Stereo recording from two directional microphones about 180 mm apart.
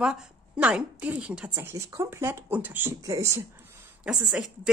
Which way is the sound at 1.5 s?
15° right (ahead or behind).